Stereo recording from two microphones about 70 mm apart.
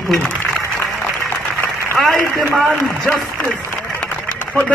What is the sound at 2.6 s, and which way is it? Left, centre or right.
Speech, centre.